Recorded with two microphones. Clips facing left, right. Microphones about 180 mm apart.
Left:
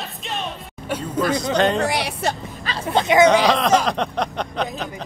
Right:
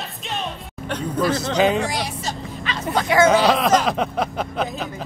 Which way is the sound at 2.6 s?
35° left (ahead or behind).